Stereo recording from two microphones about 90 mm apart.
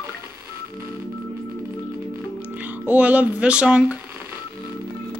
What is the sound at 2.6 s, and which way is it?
Speech, 20° right (ahead or behind).